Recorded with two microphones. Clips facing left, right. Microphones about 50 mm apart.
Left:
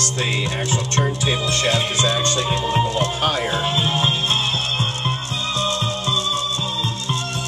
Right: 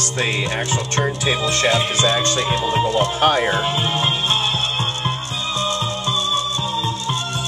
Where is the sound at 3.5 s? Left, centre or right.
Centre.